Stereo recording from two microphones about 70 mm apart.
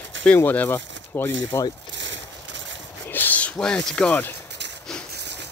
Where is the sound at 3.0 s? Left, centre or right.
Left.